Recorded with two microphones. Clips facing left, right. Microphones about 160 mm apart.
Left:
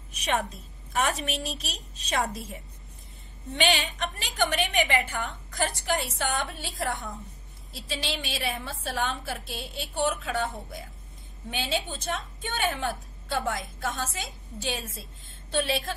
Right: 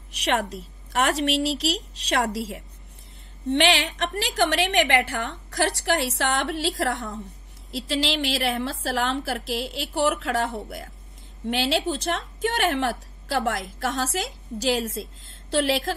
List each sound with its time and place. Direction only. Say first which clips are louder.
0.1 s a woman's voice: right 4 dB; 75° right (ahead or behind)